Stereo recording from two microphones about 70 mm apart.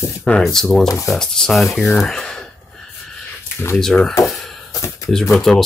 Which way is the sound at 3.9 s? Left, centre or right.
Centre.